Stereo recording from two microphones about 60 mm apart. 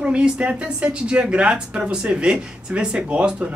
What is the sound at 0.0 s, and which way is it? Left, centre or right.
Speech, centre.